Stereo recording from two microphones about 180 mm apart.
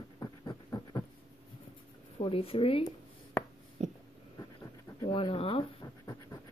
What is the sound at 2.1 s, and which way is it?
Speech, 30° left (ahead or behind).